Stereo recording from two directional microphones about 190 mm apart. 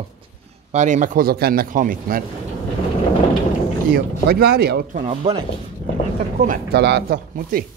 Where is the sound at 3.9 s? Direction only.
55° right (ahead or behind).